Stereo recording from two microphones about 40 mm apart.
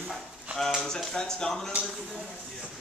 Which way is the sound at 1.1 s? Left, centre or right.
Centre.